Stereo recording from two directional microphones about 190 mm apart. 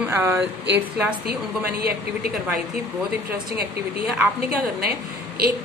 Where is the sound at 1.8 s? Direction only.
55° right (ahead or behind).